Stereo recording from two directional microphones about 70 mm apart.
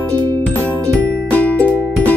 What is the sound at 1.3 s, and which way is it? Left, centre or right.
Music, left.